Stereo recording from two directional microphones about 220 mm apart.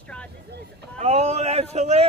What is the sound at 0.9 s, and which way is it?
Speech, 30° right (ahead or behind).